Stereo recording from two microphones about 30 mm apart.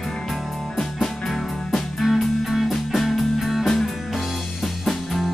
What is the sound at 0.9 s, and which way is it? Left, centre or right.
Music, centre.